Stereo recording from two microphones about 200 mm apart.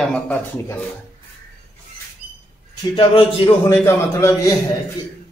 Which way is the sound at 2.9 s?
25° left (ahead or behind).